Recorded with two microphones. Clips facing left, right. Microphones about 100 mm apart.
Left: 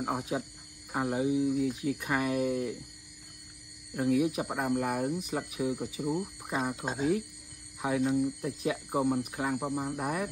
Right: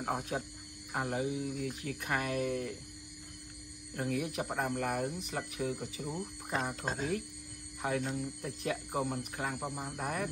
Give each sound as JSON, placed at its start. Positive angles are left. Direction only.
{"t": 0.0, "sound": "speech", "side_deg": 10}
{"t": 1.5, "sound": "speech", "side_deg": 5}
{"t": 3.9, "sound": "speech", "side_deg": 10}